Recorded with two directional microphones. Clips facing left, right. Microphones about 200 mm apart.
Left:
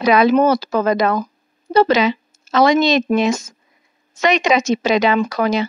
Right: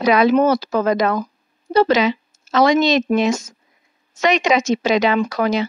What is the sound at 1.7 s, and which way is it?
Speech, 45° right (ahead or behind).